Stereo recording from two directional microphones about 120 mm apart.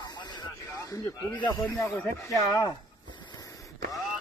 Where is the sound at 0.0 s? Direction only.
35° left (ahead or behind).